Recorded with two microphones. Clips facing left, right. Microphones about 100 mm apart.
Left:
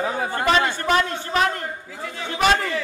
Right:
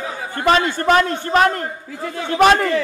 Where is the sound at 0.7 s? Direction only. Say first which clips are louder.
Right 5 dB; 50° right (ahead or behind).